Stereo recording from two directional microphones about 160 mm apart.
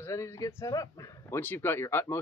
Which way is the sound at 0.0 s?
15° left (ahead or behind).